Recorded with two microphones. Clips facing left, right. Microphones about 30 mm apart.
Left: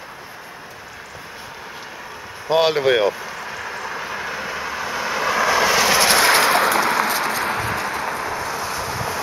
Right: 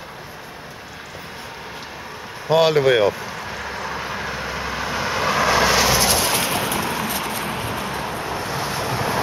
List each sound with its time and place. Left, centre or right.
2.5 s vehicle: centre
6.1 s a sound: left
8.3 s vehicle: right